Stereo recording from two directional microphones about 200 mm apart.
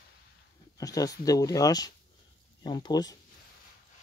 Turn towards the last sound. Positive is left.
turn(degrees=20)  # may be behind; listen again after turning